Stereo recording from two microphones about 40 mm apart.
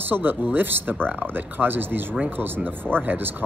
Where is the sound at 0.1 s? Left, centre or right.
Right.